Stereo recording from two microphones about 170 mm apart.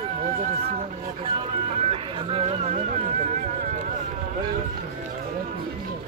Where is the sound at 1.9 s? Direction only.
35° right (ahead or behind).